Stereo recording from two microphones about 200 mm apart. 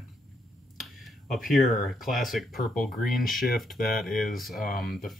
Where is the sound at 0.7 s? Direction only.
Centre (ahead or behind).